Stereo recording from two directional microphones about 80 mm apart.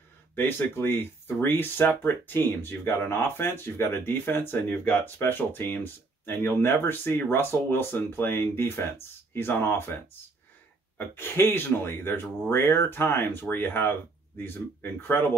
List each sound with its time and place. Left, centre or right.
0.4 s speech: left
11.0 s speech: left